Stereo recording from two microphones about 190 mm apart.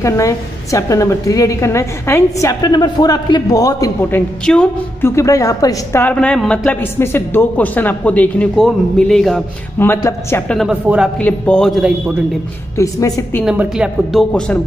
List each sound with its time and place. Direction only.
0.0 s a woman's voice: 15° left (ahead or behind)
9.8 s a woman's voice: 10° left (ahead or behind)
10.6 s speech: 5° right (ahead or behind)
11.1 s speech: 5° left (ahead or behind)
12.7 s a woman's voice: 15° left (ahead or behind)
13.5 s speech: 5° right (ahead or behind)